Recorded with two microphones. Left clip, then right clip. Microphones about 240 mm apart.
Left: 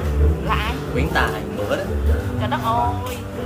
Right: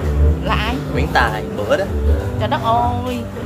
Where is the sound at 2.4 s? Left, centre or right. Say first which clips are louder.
Right 5 dB; right.